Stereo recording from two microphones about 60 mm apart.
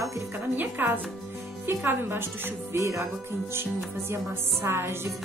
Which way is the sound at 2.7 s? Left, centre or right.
Right.